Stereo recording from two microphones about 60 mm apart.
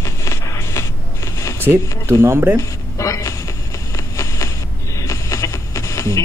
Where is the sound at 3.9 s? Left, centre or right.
Left.